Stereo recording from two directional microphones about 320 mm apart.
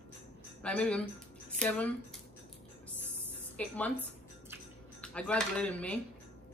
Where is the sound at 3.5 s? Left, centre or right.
Centre.